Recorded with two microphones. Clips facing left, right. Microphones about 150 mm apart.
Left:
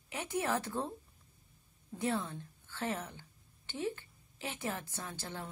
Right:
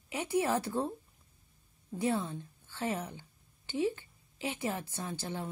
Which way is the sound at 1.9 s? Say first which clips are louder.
Right 3 dB; 10° right (ahead or behind).